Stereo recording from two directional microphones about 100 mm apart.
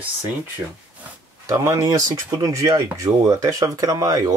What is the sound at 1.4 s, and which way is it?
Speech, 30° right (ahead or behind).